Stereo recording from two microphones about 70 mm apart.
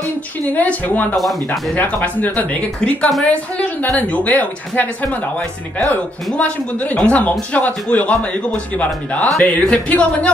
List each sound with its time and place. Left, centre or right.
0.6 s a woman's voice: left
1.1 s speech: centre
2.1 s a woman's voice: left
6.3 s a woman's voice: centre